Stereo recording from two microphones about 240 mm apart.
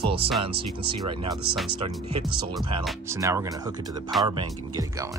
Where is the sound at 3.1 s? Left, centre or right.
Centre.